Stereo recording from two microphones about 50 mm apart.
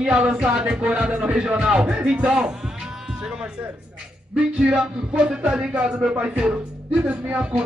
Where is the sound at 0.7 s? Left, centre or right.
Right.